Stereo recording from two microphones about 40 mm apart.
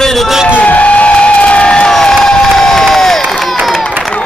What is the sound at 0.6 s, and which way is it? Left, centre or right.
Crowd, left.